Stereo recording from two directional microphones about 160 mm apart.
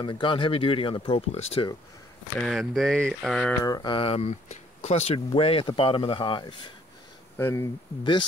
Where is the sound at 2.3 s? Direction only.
Centre (ahead or behind).